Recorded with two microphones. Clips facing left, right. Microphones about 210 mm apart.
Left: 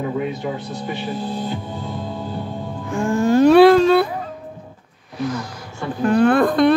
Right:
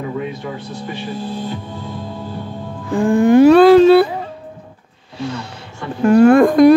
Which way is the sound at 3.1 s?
15° right (ahead or behind).